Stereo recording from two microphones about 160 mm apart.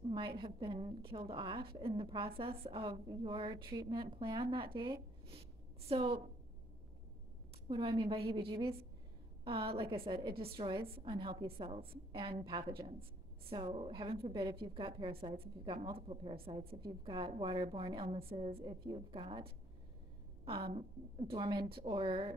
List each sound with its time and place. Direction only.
0.1 s a woman's voice: 30° right (ahead or behind)
7.6 s a woman's voice: 35° right (ahead or behind)
20.4 s a woman's voice: 35° right (ahead or behind)